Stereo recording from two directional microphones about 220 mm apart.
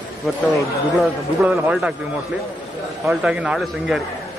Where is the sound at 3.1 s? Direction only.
5° right (ahead or behind).